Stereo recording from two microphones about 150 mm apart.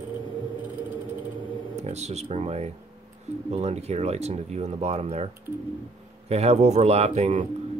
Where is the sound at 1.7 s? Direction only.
50° right (ahead or behind).